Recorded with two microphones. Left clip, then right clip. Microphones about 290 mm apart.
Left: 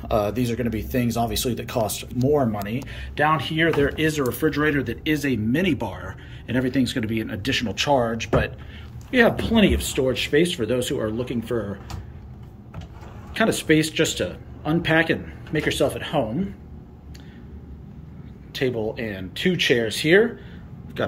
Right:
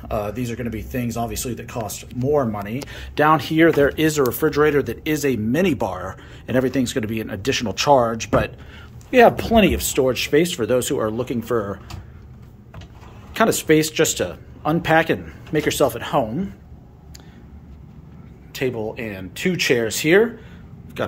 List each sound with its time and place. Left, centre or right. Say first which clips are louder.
0.1 s speech: left 3 dB; centre
13.3 s speech: right 3 dB; centre
18.5 s speech: even; centre